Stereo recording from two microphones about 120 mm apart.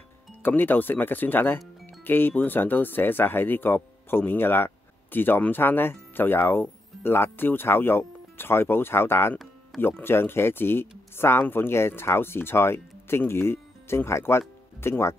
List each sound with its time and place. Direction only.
0.4 s speech: 15° left (ahead or behind)